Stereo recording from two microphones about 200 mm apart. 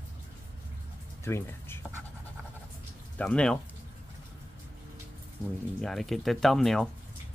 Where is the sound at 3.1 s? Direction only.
5° left (ahead or behind).